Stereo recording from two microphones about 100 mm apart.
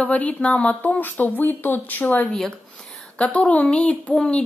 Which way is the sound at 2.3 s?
5° left (ahead or behind).